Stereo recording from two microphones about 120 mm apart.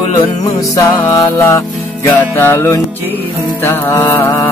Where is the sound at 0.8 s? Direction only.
25° left (ahead or behind).